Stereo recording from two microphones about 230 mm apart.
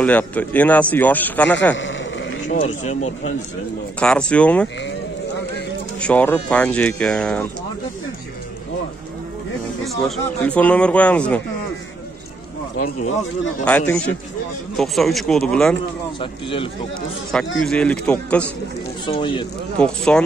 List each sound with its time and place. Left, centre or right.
0.0 s speech: centre
2.6 s speech: left
4.0 s speech: centre
5.9 s speech: centre
10.0 s speech: centre
13.7 s speech: centre
16.2 s speech: left
17.6 s speech: centre
19.0 s speech: left
19.8 s speech: centre